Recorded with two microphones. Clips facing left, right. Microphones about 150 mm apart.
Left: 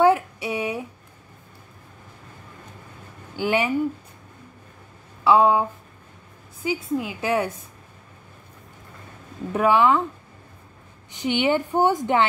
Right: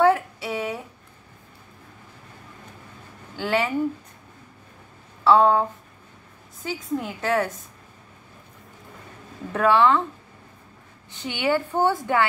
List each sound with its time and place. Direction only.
0.0 s a sound: 15° left (ahead or behind)
3.3 s a woman's voice: 15° left (ahead or behind)
5.2 s a woman's voice: 10° left (ahead or behind)
9.5 s a woman's voice: 15° left (ahead or behind)
11.1 s a woman's voice: 15° left (ahead or behind)